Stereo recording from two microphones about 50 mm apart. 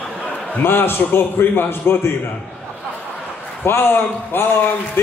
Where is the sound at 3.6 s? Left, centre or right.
Left.